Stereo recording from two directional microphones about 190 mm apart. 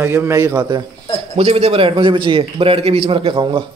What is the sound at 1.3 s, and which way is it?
A man's voice, 30° right (ahead or behind).